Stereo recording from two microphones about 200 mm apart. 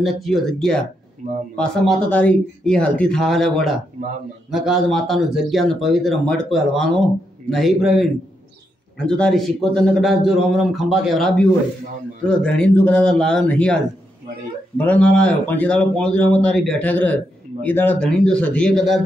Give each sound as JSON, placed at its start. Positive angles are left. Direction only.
{"t": 0.0, "sound": "speech", "side_deg": 0}
{"t": 1.2, "sound": "speech", "side_deg": -40}
{"t": 1.6, "sound": "speech", "side_deg": 5}
{"t": 14.8, "sound": "speech", "side_deg": 5}